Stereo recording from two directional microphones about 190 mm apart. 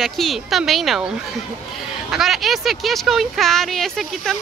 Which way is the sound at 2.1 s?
Centre (ahead or behind).